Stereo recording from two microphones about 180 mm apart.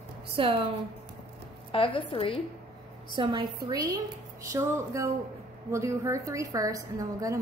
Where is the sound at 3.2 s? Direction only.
25° right (ahead or behind).